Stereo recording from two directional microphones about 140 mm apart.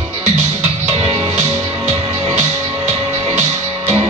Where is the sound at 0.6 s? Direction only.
45° right (ahead or behind).